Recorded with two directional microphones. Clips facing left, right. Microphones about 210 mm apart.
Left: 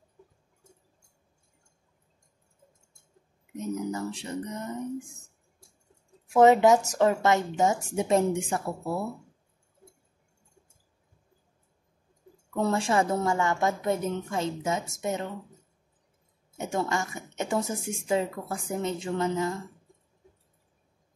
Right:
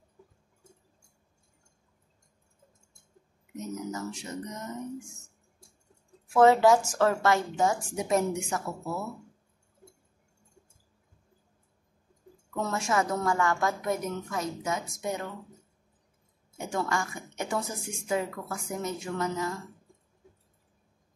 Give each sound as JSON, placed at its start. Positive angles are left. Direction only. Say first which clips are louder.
{"t": 3.5, "sound": "speech", "louder": "left 4 dB", "side_deg": 30}
{"t": 6.3, "sound": "a woman's voice", "louder": "left 1 dB", "side_deg": 20}
{"t": 12.5, "sound": "a woman's voice", "louder": "left 4 dB", "side_deg": 30}
{"t": 16.5, "sound": "a woman's voice", "louder": "left 2 dB", "side_deg": 25}